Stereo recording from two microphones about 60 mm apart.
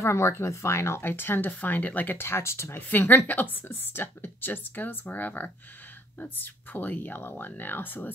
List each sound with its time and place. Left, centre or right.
0.0 s speech: left
2.9 s a woman's voice: left